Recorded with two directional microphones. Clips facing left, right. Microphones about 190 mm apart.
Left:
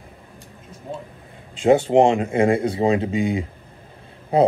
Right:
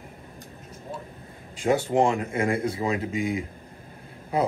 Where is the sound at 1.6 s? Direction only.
25° left (ahead or behind).